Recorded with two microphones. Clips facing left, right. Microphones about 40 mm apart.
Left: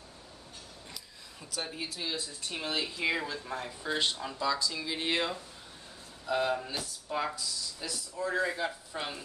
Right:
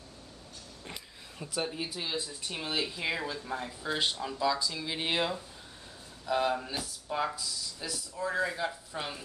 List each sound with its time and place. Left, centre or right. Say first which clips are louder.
1.4 s speech: right 4 dB; centre
2.5 s speech: even; centre